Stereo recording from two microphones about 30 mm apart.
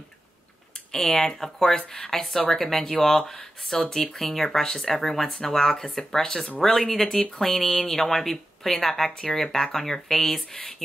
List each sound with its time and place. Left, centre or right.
0.9 s a woman's voice: centre
9.1 s speech: left
9.4 s a woman's voice: centre